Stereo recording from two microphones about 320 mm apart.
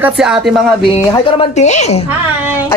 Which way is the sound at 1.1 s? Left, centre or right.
Centre.